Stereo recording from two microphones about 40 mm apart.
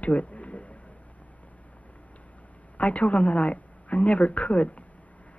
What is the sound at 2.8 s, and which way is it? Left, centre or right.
A woman's voice, left.